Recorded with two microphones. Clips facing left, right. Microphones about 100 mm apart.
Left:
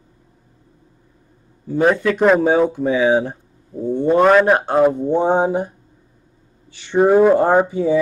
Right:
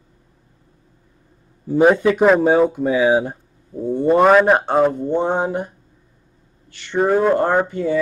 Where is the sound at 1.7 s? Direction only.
15° right (ahead or behind).